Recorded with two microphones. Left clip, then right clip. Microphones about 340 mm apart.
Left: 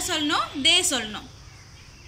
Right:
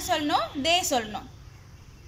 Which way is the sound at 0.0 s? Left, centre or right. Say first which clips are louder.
Left 1 dB; right.